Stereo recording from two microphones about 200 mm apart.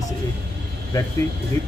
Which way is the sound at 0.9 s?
15° left (ahead or behind).